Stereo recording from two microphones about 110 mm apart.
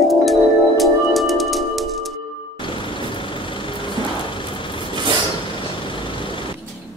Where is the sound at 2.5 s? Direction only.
50° left (ahead or behind).